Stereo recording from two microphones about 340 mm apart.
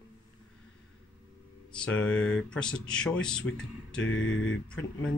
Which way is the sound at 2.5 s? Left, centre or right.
Centre.